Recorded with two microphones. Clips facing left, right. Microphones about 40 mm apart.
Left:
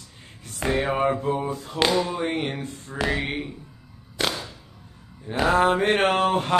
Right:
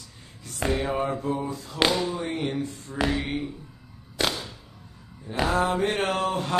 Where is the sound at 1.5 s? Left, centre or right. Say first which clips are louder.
Left 4 dB; left.